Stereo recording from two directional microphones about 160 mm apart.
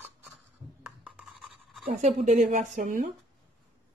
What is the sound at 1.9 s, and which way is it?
A woman's voice, 50° right (ahead or behind).